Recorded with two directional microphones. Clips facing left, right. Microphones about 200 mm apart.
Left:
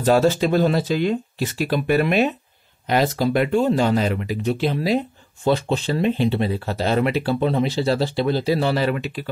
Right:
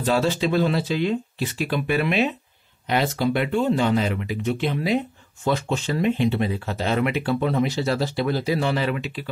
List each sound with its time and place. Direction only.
0.0 s speech: 45° left (ahead or behind)